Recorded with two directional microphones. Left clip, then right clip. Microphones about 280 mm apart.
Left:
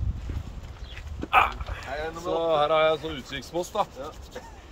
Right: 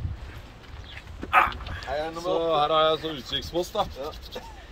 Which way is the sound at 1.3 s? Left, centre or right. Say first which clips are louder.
Even; left.